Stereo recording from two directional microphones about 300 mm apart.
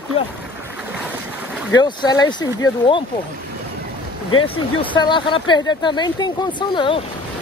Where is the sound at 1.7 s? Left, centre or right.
Centre.